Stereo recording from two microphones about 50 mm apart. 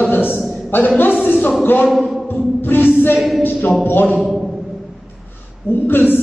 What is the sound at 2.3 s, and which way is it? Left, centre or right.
Music, left.